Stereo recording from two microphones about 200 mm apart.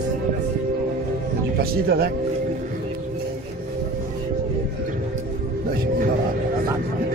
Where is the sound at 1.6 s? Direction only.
50° right (ahead or behind).